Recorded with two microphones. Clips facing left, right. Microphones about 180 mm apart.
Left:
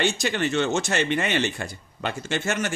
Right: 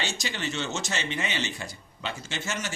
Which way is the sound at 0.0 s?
55° left (ahead or behind).